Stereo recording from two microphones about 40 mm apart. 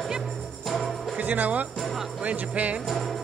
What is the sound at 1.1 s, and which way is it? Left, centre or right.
Speech, right.